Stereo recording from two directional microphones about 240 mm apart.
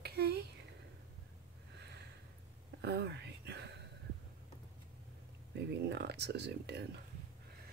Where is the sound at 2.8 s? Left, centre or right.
Right.